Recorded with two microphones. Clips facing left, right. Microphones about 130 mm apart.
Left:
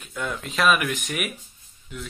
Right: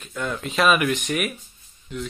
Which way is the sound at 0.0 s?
10° left (ahead or behind).